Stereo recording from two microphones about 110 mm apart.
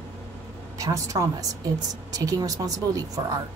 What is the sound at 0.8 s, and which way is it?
A woman's voice, 30° right (ahead or behind).